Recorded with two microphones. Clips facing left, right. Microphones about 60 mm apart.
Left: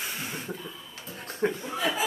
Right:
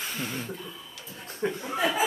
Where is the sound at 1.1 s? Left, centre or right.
Left.